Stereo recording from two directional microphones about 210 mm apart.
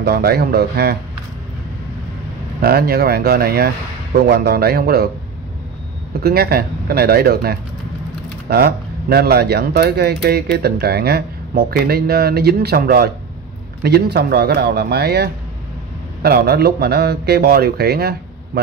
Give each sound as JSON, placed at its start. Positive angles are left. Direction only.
{"t": 0.0, "sound": "speech", "side_deg": -50}
{"t": 2.6, "sound": "speech", "side_deg": -45}
{"t": 6.2, "sound": "speech", "side_deg": -50}